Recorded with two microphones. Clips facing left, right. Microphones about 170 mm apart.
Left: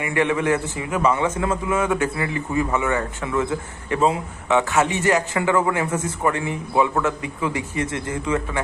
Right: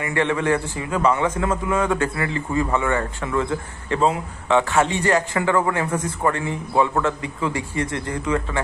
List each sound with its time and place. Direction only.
0.0 s a man's voice: 15° left (ahead or behind)